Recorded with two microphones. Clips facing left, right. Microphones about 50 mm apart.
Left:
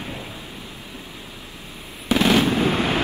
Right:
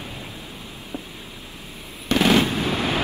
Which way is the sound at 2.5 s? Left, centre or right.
Left.